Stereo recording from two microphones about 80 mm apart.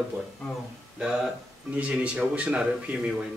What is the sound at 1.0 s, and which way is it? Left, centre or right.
Speech, centre.